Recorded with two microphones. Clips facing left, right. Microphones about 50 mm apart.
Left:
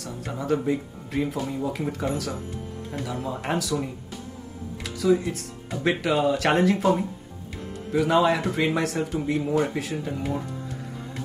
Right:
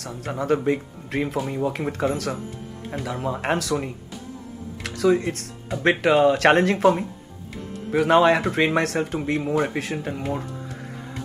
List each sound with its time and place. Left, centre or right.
0.0 s speech: right
3.1 s speech: right